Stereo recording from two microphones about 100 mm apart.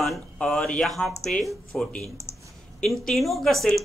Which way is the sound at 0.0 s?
Centre (ahead or behind).